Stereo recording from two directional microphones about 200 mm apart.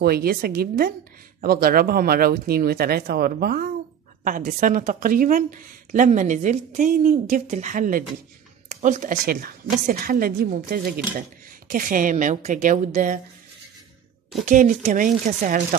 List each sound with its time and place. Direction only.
0.0 s a woman's voice: 50° right (ahead or behind)
14.4 s speech: 40° right (ahead or behind)